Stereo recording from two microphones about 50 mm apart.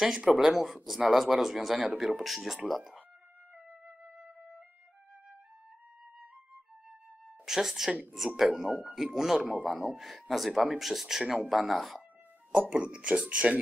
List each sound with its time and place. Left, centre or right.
0.0 s speech: centre
2.6 s speech: centre
3.8 s music: centre
7.4 s speech: centre
8.6 s speech: right
8.9 s speech: centre
9.5 s speech: right
9.9 s speech: centre
12.6 s speech: right